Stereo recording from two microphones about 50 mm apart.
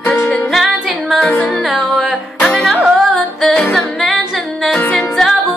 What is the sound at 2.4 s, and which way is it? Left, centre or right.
Music, left.